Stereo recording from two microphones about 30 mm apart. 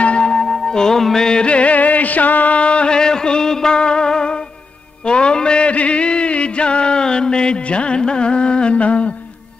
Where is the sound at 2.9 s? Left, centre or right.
Left.